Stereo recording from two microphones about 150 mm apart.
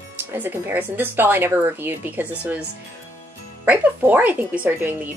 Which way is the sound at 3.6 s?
10° right (ahead or behind).